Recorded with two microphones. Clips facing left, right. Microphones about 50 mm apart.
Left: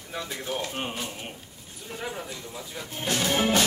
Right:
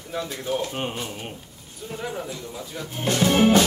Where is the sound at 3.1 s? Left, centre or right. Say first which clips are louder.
Right 7 dB; right.